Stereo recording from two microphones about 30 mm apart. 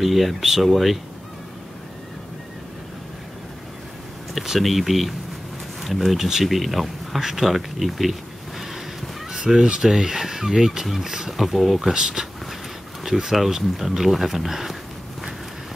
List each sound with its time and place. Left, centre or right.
0.0 s speech: centre
4.6 s speech: centre
7.2 s a sound: centre
9.8 s speech: centre
11.3 s speech: centre
11.9 s speech: right
13.0 s speech: centre